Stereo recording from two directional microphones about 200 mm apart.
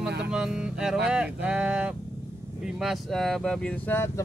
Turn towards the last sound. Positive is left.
turn(degrees=10)  # may be behind; listen again after turning